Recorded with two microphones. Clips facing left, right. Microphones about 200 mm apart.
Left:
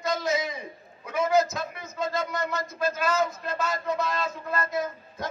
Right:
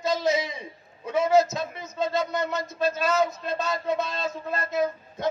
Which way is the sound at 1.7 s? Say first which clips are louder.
Right 4 dB; 25° right (ahead or behind).